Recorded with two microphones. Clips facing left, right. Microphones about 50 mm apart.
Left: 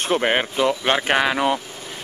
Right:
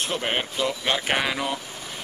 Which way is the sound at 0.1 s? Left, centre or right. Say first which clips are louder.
Left 12 dB; left.